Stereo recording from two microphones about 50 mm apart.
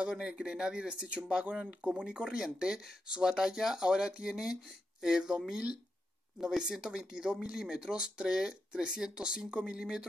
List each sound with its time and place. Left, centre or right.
0.0 s speech: centre